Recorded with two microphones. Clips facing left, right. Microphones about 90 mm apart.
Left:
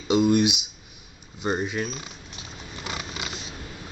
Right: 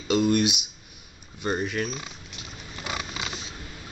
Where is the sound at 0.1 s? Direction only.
15° left (ahead or behind).